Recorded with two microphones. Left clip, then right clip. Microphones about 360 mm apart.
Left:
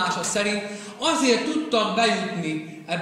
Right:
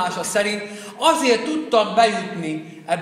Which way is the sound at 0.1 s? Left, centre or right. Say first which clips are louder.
Right 3 dB; right.